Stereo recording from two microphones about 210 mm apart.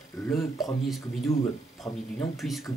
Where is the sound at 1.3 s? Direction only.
15° left (ahead or behind).